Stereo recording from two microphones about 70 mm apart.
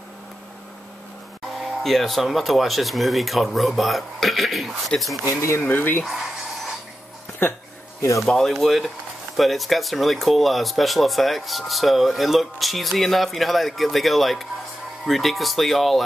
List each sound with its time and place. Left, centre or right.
1.6 s speech: centre
5.3 s speech: left
5.6 s speech: left
8.3 s speech: centre